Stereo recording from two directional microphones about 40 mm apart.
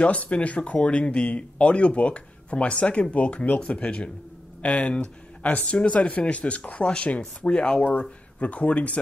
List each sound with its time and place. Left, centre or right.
0.0 s speech: left